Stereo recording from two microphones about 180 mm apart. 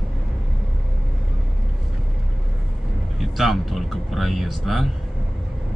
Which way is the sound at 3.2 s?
Centre (ahead or behind).